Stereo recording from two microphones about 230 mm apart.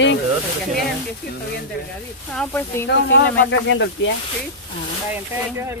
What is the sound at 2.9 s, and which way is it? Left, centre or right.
Speech, left.